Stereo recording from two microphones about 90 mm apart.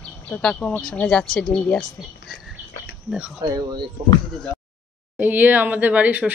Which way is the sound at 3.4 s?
45° right (ahead or behind).